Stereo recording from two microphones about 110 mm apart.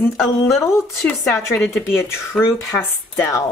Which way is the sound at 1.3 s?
25° left (ahead or behind).